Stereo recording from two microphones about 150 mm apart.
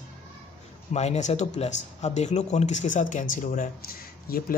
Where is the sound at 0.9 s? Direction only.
45° left (ahead or behind).